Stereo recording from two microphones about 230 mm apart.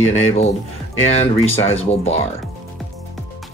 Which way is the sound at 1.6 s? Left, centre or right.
Left.